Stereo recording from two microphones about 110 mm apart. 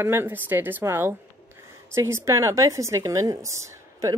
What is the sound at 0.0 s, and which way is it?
A woman's voice, 20° right (ahead or behind).